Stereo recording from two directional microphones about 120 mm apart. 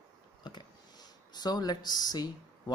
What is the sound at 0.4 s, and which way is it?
Speech, 35° left (ahead or behind).